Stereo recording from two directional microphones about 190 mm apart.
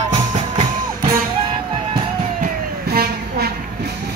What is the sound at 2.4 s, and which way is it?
Vehicle, 55° right (ahead or behind).